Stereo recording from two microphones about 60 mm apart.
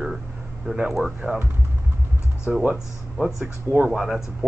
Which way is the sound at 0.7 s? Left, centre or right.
Centre.